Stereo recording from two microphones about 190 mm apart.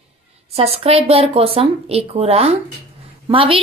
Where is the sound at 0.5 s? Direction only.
30° right (ahead or behind).